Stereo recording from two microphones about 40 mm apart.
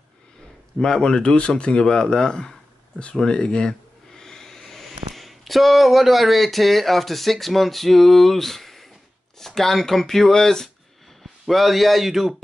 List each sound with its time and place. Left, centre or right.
0.7 s speech: centre
11.4 s speech: centre